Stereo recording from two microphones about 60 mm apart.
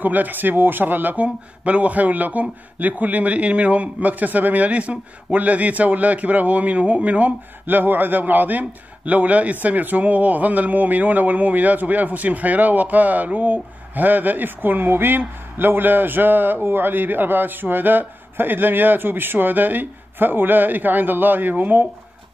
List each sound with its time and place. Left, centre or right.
0.0 s a man's voice: right